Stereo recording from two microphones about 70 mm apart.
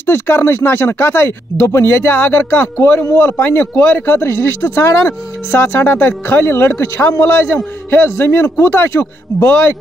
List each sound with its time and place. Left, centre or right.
0.0 s speech: left